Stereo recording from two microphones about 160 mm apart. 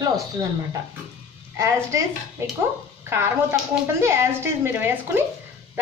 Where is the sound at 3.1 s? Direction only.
15° right (ahead or behind).